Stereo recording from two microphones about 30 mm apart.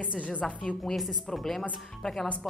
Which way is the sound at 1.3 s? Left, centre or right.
Centre.